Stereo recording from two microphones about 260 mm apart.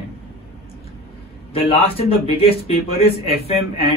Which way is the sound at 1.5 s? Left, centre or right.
Left.